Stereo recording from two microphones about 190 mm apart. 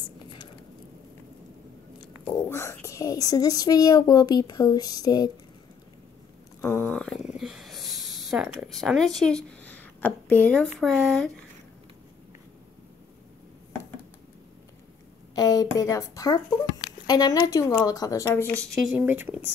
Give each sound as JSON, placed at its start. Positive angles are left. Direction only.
{"t": 2.2, "sound": "speech", "side_deg": 15}
{"t": 6.6, "sound": "speech", "side_deg": 10}
{"t": 15.3, "sound": "speech", "side_deg": 20}
{"t": 18.6, "sound": "speech", "side_deg": 0}
{"t": 18.9, "sound": "speech", "side_deg": -10}